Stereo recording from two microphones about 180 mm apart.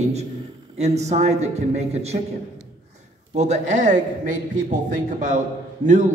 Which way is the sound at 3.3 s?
40° right (ahead or behind).